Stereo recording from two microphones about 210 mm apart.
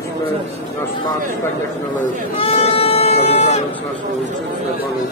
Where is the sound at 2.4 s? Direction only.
25° left (ahead or behind).